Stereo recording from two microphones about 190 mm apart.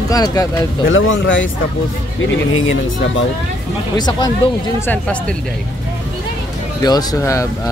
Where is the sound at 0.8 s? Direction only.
90° left.